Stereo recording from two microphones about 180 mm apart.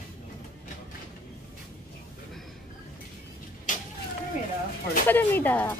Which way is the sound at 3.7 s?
45° left (ahead or behind).